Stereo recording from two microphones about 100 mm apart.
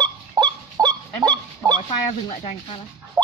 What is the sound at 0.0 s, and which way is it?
Goose, 40° right (ahead or behind).